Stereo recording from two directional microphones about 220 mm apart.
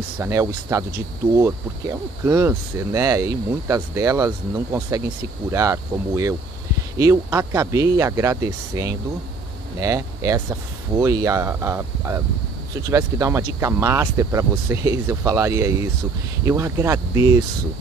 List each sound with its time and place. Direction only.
0.2 s speech: 15° right (ahead or behind)